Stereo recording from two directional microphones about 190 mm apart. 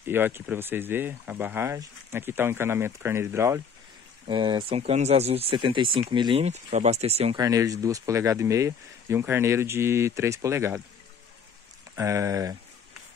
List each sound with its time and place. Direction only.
0.0 s speech: 10° right (ahead or behind)
4.3 s speech: 25° right (ahead or behind)
7.3 s speech: 20° right (ahead or behind)
11.9 s speech: 15° right (ahead or behind)